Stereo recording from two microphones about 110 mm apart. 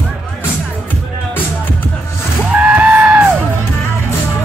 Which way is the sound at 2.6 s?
15° right (ahead or behind).